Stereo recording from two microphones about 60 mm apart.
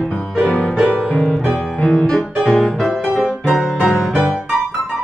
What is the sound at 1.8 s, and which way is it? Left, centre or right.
Music, centre.